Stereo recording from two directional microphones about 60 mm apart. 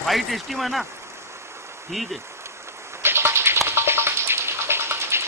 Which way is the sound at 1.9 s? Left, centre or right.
Centre.